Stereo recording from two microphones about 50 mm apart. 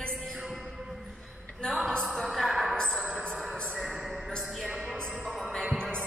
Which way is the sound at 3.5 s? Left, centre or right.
Left.